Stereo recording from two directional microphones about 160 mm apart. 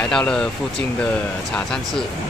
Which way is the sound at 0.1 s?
5° left (ahead or behind).